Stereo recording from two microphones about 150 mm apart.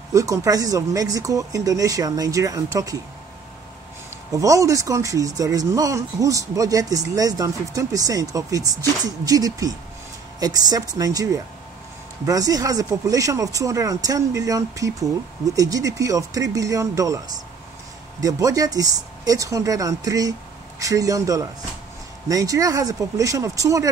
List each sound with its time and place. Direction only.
0.1 s speech: 20° right (ahead or behind)
4.3 s speech: 20° right (ahead or behind)
18.2 s speech: 25° right (ahead or behind)